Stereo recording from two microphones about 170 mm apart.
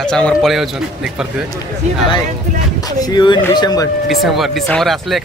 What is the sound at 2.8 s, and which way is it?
Speech, 25° left (ahead or behind).